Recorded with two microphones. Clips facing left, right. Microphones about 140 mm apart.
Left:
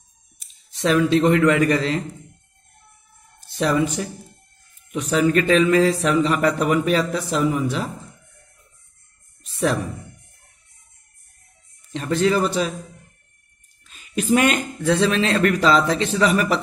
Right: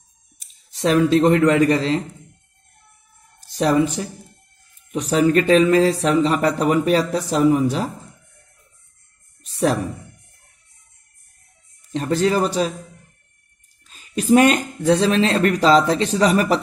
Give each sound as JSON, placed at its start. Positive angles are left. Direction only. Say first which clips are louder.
{"t": 0.7, "sound": "speech", "louder": "right 2 dB", "side_deg": -40}
{"t": 3.3, "sound": "speech", "louder": "right 3 dB", "side_deg": -40}
{"t": 9.4, "sound": "a sound", "louder": "right 2 dB", "side_deg": -35}
{"t": 11.9, "sound": "speech", "louder": "right 1 dB", "side_deg": -40}
{"t": 13.8, "sound": "speech", "louder": "right 3 dB", "side_deg": -35}